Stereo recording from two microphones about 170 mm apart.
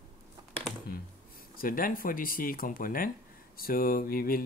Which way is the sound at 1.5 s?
55° left (ahead or behind).